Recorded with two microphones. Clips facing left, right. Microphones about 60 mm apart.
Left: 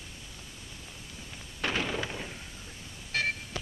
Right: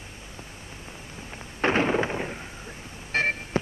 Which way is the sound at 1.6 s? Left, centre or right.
Right.